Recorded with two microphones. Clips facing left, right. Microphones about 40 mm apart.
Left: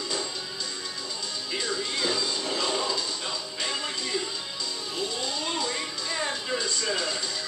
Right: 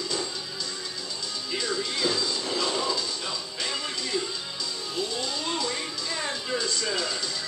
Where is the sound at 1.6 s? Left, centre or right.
Centre.